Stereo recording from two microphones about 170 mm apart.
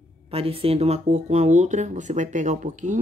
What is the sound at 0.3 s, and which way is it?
Speech, 35° right (ahead or behind).